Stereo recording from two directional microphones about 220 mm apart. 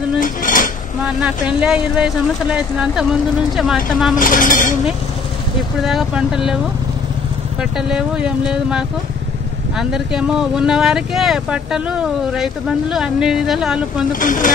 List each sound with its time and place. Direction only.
0.2 s speech: 35° left (ahead or behind)
1.0 s speech: 5° right (ahead or behind)
4.2 s speech: 40° left (ahead or behind)
5.8 s speech: centre (ahead or behind)
7.7 s speech: 5° right (ahead or behind)
14.2 s speech: 35° left (ahead or behind)